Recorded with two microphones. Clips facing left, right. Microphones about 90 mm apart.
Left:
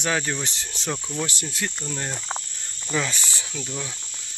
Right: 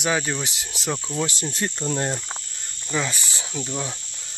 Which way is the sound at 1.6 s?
30° right (ahead or behind).